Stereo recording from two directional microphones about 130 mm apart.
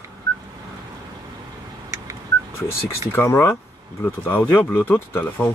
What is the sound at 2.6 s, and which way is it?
Speech, 20° left (ahead or behind).